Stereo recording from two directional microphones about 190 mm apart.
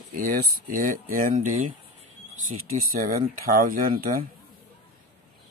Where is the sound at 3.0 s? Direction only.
50° right (ahead or behind).